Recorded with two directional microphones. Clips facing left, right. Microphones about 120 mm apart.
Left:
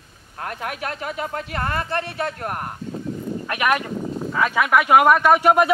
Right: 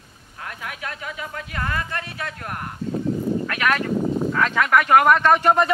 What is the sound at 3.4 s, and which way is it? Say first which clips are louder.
Speech: left 1 dB; 20° left (ahead or behind).